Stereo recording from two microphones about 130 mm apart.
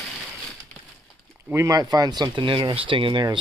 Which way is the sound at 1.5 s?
25° right (ahead or behind).